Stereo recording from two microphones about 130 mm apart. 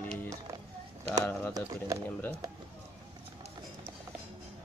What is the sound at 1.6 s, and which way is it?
Speech, 25° right (ahead or behind).